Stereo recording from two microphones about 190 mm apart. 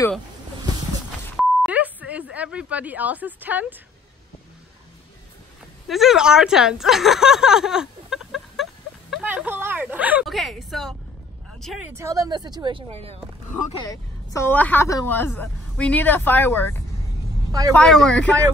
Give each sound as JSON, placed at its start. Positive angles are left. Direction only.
{"t": 1.3, "sound": "beep", "side_deg": -5}
{"t": 5.9, "sound": "a woman's voice", "side_deg": 0}
{"t": 11.9, "sound": "speech", "side_deg": -15}
{"t": 13.7, "sound": "a woman's voice", "side_deg": 15}
{"t": 17.5, "sound": "speech", "side_deg": -20}
{"t": 17.7, "sound": "speech", "side_deg": 0}